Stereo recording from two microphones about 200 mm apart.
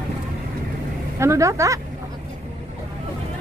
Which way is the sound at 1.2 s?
15° right (ahead or behind).